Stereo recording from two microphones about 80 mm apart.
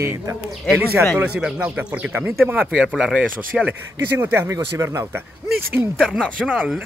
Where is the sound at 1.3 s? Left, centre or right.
Centre.